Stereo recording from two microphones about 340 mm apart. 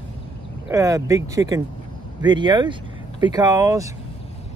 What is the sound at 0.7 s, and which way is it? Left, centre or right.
Speech, centre.